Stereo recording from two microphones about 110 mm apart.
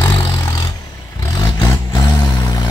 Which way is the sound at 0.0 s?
40° left (ahead or behind).